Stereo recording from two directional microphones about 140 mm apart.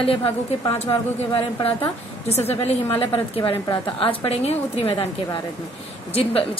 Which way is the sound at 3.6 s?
35° left (ahead or behind).